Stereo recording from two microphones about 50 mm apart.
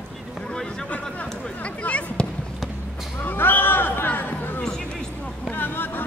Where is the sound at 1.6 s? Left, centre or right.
Left.